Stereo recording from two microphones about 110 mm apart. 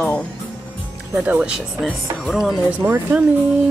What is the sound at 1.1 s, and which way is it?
Speech, 10° right (ahead or behind).